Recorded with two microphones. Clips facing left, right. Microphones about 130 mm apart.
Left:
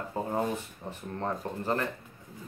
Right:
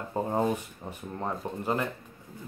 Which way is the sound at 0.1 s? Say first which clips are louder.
Right 4 dB; 20° right (ahead or behind).